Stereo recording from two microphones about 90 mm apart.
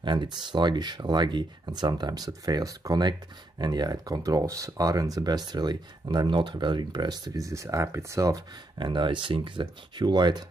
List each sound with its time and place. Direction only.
0.0 s speech: 60° right (ahead or behind)
7.3 s speech: 35° right (ahead or behind)
8.7 s speech: 60° right (ahead or behind)